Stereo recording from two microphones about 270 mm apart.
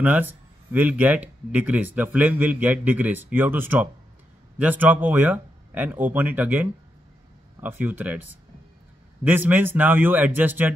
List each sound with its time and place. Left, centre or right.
0.0 s speech: centre